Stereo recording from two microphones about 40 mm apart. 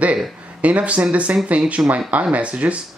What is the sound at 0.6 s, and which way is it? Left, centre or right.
Speech, right.